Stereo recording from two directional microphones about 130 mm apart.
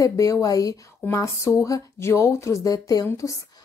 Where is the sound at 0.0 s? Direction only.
25° left (ahead or behind).